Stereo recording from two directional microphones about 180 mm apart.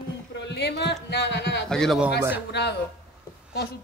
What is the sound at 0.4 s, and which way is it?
Speech, 70° left (ahead or behind).